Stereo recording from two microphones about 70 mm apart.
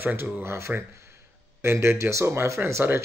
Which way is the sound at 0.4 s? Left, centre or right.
Right.